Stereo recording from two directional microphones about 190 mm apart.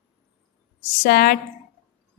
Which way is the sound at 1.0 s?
50° left (ahead or behind).